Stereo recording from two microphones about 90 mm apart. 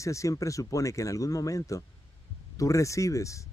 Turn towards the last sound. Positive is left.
turn(degrees=35)  # may be behind; listen again after turning